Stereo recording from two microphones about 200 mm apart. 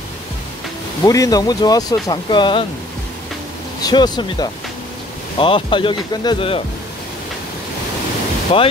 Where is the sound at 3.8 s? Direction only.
20° left (ahead or behind).